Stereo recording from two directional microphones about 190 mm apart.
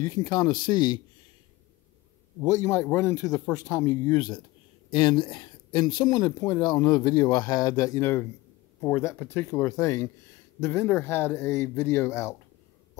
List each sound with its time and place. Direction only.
0.0 s speech: 20° left (ahead or behind)
2.4 s speech: 15° left (ahead or behind)